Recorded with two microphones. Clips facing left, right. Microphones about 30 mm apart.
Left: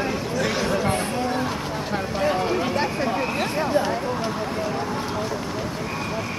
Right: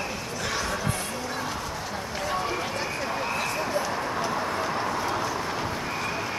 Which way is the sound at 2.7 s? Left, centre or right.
Left.